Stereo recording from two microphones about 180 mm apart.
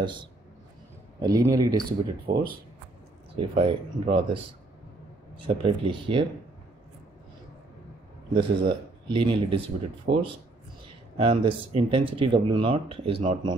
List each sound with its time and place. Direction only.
0.0 s speech: 25° right (ahead or behind)
1.8 s speech: 55° right (ahead or behind)
3.3 s speech: 30° right (ahead or behind)
5.6 s speech: 30° right (ahead or behind)
8.4 s speech: 25° right (ahead or behind)
11.1 s speech: 30° right (ahead or behind)